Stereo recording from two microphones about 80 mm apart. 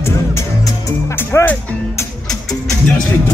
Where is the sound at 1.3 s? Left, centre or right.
Left.